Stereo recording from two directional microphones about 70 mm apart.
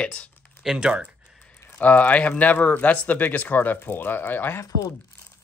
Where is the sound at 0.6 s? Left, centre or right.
Centre.